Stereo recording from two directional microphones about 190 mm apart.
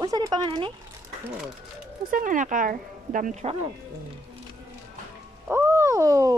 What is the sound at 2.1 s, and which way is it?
Speech, 45° right (ahead or behind).